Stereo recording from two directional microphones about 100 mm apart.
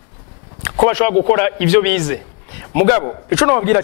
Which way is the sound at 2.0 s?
20° left (ahead or behind).